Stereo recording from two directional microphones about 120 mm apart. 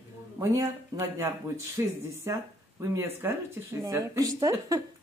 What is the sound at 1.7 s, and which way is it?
Speech, 25° right (ahead or behind).